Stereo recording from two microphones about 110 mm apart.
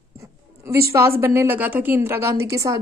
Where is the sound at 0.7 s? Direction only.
25° right (ahead or behind).